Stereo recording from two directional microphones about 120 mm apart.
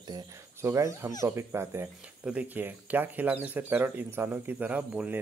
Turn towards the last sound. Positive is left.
turn(degrees=-10)  # may be behind; listen again after turning